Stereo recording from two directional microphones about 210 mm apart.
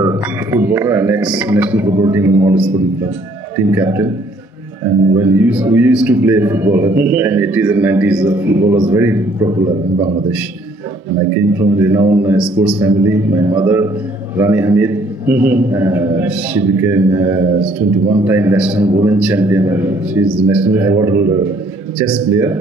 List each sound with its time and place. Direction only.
0.0 s a man's voice: 10° right (ahead or behind)
5.1 s a man's voice: 10° right (ahead or behind)
11.5 s a man's voice: 10° right (ahead or behind)
17.6 s a man's voice: 25° right (ahead or behind)
18.2 s a man's voice: 10° right (ahead or behind)